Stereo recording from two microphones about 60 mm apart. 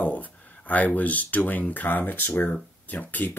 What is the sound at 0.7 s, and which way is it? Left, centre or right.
Speech, left.